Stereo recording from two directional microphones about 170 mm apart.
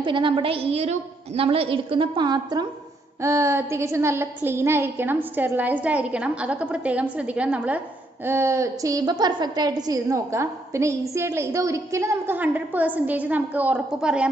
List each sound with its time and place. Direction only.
0.0 s a woman's voice: 30° right (ahead or behind); by 14.3 s 5° right (ahead or behind)